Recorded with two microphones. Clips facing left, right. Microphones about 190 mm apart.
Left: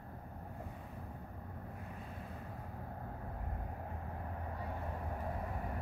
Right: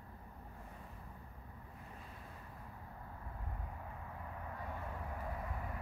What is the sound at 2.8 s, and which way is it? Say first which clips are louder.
Vehicle: left 6 dB; 55° left (ahead or behind).